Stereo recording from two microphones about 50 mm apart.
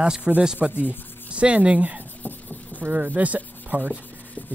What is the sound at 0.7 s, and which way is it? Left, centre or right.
Sanding, left.